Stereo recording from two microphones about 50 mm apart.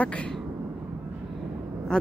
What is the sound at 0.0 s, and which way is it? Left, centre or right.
Speech, left.